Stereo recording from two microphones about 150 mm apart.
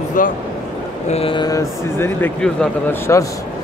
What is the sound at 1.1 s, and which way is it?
Speech, 35° left (ahead or behind).